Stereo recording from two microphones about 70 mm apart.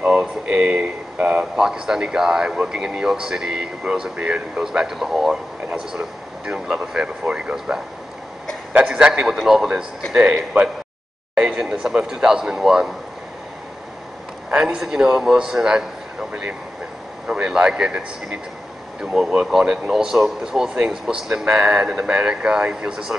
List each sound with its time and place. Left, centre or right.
0.0 s a man's voice: centre
14.5 s speech: centre